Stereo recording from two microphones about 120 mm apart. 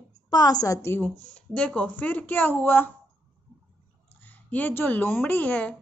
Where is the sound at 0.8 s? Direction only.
15° left (ahead or behind).